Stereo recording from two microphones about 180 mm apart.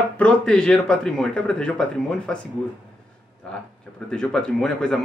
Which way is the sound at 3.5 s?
5° left (ahead or behind).